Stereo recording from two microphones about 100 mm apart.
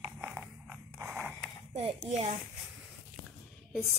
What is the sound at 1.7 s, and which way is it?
Speech, 85° right.